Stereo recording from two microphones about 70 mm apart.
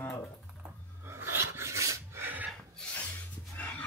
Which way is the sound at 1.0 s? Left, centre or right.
Right.